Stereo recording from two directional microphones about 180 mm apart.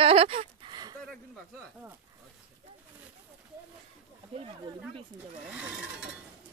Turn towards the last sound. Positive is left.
turn(degrees=-5)  # may be behind; listen again after turning